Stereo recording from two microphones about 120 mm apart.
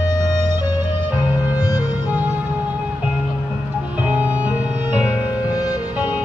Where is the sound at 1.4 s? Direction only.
10° right (ahead or behind).